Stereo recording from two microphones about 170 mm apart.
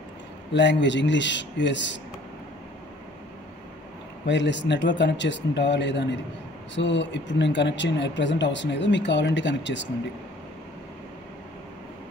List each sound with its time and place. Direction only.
0.5 s speech: 90° left
4.3 s speech: 90° left